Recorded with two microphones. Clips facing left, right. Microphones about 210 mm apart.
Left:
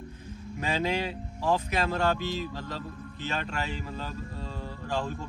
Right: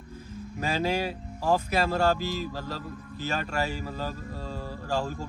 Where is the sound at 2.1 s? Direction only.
10° right (ahead or behind).